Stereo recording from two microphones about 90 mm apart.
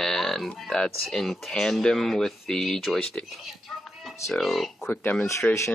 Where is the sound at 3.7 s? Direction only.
5° left (ahead or behind).